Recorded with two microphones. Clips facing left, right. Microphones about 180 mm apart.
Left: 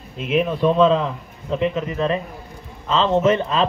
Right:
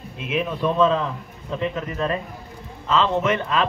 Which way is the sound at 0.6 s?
20° left (ahead or behind).